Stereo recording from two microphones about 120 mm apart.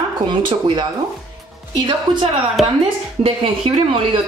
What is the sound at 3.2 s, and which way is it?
Speech, 50° right (ahead or behind).